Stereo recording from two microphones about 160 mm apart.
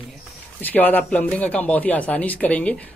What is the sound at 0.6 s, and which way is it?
Speech, 10° left (ahead or behind).